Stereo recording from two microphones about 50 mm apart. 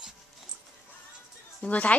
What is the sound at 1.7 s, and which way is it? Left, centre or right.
Speech, left.